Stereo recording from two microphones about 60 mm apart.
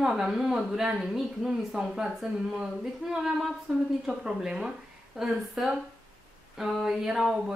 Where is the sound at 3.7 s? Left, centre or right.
Centre.